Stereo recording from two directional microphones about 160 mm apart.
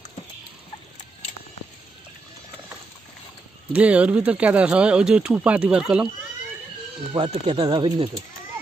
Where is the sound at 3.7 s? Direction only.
10° right (ahead or behind).